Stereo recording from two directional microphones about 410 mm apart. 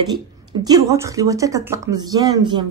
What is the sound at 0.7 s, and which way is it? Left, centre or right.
Speech, centre.